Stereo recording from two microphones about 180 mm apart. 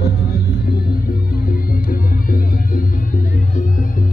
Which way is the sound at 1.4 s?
50° left (ahead or behind).